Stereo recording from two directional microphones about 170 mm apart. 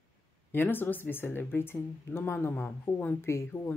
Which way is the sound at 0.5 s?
10° left (ahead or behind).